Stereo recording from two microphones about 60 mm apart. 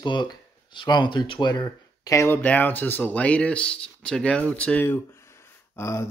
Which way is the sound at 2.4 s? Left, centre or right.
Left.